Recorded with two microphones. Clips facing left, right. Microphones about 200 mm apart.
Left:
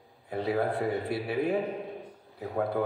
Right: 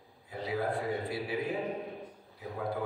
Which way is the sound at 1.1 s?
60° left (ahead or behind).